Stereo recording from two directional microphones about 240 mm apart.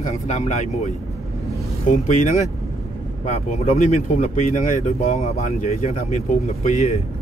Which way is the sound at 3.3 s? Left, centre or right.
Left.